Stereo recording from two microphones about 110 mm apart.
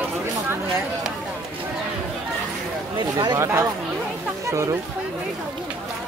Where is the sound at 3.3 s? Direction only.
25° right (ahead or behind).